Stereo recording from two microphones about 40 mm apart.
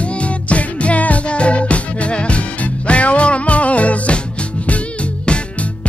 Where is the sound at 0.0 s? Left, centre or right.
Left.